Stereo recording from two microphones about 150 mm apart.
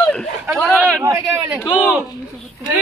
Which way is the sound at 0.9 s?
20° right (ahead or behind).